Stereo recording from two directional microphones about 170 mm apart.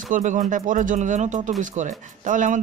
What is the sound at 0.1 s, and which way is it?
Speech, 50° right (ahead or behind).